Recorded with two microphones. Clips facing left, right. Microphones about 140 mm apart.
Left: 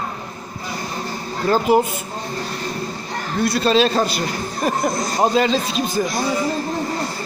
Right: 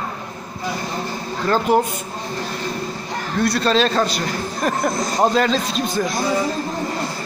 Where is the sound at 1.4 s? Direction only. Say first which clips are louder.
Left 1 dB; 10° left (ahead or behind).